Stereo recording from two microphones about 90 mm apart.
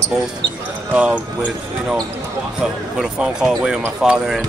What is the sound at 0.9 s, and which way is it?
Speech, 15° right (ahead or behind).